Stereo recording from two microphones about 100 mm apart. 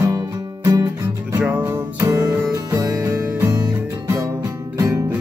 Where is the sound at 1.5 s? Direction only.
20° right (ahead or behind).